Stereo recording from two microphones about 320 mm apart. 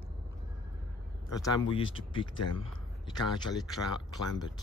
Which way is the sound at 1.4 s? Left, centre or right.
Centre.